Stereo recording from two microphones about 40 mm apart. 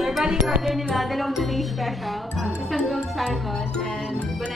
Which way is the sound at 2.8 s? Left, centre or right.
Centre.